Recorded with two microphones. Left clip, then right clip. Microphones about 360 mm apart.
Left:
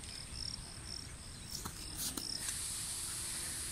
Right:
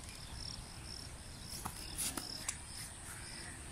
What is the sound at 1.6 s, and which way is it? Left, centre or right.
Cricket, centre.